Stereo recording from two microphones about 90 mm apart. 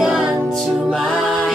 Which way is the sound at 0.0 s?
5° right (ahead or behind).